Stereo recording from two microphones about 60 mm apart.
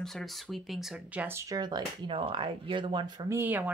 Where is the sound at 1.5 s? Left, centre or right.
Right.